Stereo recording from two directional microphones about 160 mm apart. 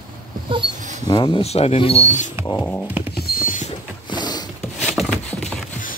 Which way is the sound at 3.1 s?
70° left (ahead or behind).